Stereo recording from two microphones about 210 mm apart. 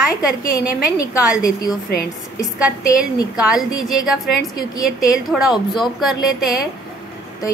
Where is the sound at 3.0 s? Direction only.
5° right (ahead or behind).